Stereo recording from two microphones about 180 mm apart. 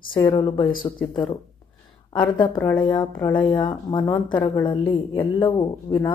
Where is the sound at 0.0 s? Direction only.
25° left (ahead or behind).